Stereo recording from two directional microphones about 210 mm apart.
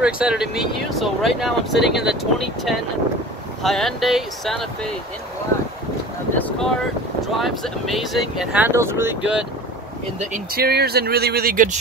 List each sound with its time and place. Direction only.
0.0 s speech: 5° right (ahead or behind)
6.3 s speech: 5° left (ahead or behind)
10.3 s speech: 45° right (ahead or behind)